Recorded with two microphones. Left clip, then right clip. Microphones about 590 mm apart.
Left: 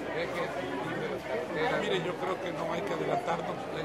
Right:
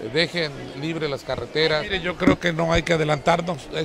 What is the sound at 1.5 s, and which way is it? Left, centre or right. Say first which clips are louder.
A man's voice: right 9 dB; right.